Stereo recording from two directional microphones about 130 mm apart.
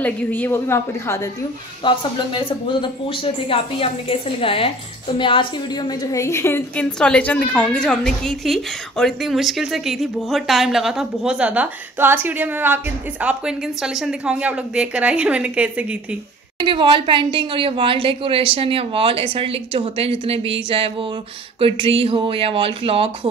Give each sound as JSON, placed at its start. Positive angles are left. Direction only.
{"t": 0.0, "sound": "a woman's voice", "side_deg": 15}
{"t": 1.8, "sound": "speech", "side_deg": 40}
{"t": 6.7, "sound": "a woman's voice", "side_deg": 10}
{"t": 16.5, "sound": "a woman's voice", "side_deg": -40}